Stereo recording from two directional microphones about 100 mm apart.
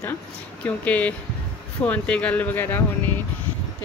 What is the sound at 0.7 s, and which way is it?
A woman's voice, 15° left (ahead or behind).